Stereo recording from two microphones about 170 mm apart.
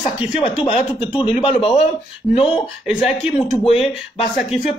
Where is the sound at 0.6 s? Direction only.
35° left (ahead or behind).